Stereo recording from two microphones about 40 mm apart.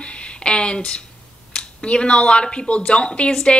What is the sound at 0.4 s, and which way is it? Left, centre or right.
Speech, left.